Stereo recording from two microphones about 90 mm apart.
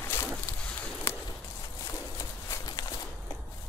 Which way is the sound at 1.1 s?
25° left (ahead or behind).